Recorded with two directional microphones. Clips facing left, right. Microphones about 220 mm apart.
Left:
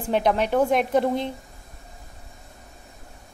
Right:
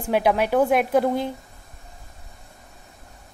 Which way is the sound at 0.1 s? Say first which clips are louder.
Right 1 dB; 5° right (ahead or behind).